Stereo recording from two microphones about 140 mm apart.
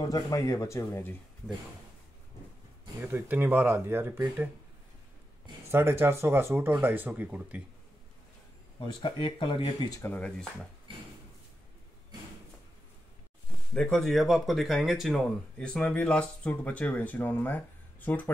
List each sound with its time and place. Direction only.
0.0 s speech: 25° left (ahead or behind)
3.0 s speech: 15° right (ahead or behind)
5.7 s speech: 15° right (ahead or behind)
8.7 s speech: 35° left (ahead or behind)
10.0 s speech: 10° left (ahead or behind)
10.9 s a sound: 40° right (ahead or behind)
13.7 s speech: 5° left (ahead or behind)